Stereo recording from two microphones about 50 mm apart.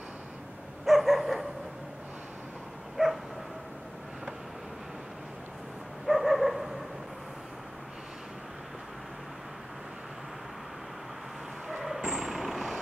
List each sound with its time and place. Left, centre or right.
0.8 s dog: centre
3.0 s dog: centre
6.0 s dog: centre
12.0 s vehicle: centre